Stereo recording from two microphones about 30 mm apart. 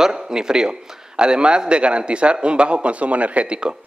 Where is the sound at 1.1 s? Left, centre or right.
Right.